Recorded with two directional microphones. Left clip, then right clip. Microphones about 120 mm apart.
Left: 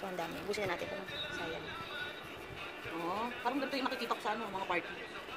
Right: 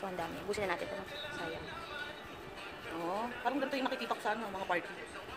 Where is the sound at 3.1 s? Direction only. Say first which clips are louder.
Right 1 dB; 70° right (ahead or behind).